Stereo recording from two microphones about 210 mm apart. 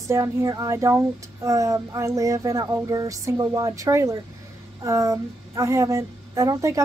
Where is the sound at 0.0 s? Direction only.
15° right (ahead or behind).